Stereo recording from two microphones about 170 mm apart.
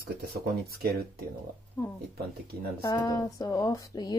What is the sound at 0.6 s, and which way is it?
Speech, 65° right (ahead or behind).